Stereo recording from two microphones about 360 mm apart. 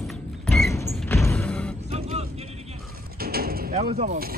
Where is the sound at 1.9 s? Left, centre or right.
Centre.